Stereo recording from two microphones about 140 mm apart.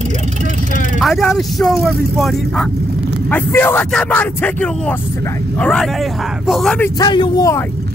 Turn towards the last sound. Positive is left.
turn(degrees=30)  # may be behind; listen again after turning